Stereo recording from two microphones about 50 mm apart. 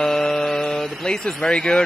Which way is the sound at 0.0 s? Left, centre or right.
Centre.